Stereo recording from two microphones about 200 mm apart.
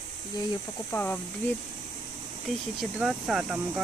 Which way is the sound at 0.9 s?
10° left (ahead or behind).